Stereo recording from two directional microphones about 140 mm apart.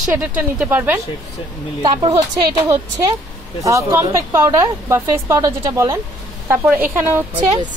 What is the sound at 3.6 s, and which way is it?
A woman's voice, 25° right (ahead or behind).